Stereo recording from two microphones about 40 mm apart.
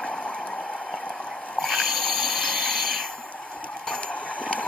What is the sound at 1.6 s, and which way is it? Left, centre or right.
Snort, centre.